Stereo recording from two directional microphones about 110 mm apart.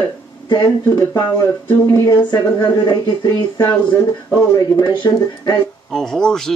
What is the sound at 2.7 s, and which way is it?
Speech, 40° left (ahead or behind).